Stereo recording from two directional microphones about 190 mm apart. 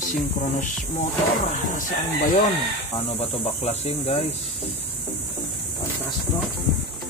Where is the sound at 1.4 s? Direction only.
45° left (ahead or behind).